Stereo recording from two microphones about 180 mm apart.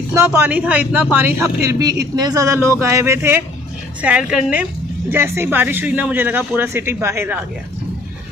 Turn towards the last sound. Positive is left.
turn(degrees=-15)  # may be behind; listen again after turning